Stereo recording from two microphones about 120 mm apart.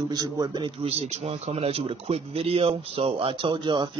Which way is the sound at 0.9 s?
60° right (ahead or behind).